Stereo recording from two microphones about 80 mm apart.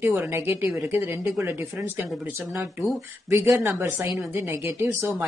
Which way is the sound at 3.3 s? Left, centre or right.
Right.